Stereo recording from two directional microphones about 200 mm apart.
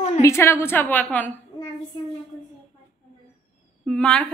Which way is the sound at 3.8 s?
5° left (ahead or behind).